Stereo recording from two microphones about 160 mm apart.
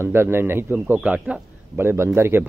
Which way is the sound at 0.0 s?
15° right (ahead or behind).